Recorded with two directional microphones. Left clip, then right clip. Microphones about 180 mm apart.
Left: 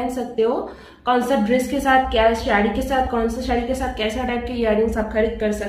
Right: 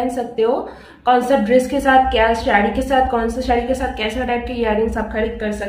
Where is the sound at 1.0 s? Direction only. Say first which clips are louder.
Right 4 dB; 20° right (ahead or behind).